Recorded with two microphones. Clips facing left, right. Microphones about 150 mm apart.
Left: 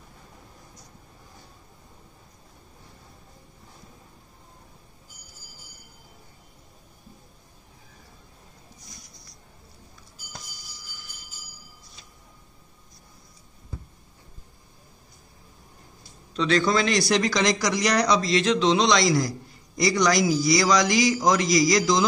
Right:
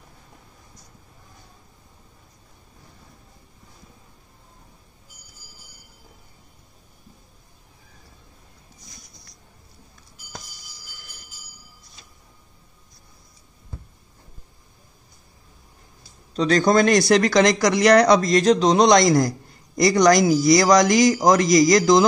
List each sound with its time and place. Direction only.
16.3 s speech: 40° right (ahead or behind)